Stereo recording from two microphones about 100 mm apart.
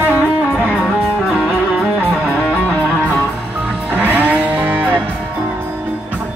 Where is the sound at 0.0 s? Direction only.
20° right (ahead or behind).